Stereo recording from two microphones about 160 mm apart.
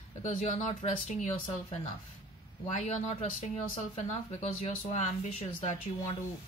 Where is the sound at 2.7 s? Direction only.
45° left (ahead or behind).